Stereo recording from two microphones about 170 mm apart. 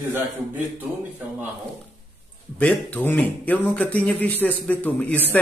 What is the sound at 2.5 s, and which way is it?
Speech, 10° left (ahead or behind).